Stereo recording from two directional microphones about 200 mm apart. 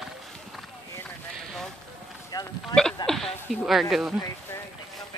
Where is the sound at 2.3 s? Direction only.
15° left (ahead or behind).